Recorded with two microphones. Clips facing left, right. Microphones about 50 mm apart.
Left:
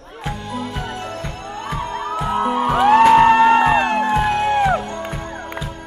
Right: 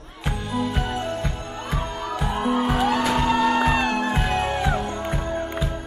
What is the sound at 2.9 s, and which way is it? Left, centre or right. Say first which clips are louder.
Music: left 11 dB; left.